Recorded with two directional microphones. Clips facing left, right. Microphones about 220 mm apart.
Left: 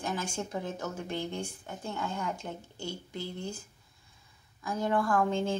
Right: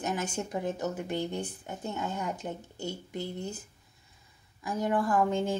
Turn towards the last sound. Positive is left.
turn(degrees=-15)  # may be behind; listen again after turning